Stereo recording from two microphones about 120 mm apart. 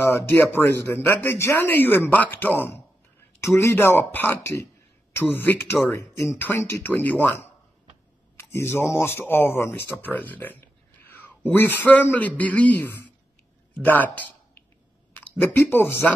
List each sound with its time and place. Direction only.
0.3 s speech: 15° left (ahead or behind)